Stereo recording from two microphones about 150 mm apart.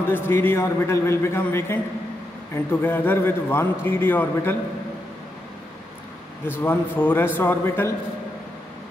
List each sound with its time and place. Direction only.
0.1 s a man's voice: 15° left (ahead or behind)
6.6 s a man's voice: 15° left (ahead or behind)